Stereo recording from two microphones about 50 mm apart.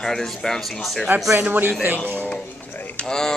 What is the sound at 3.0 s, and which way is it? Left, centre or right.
Speech, centre.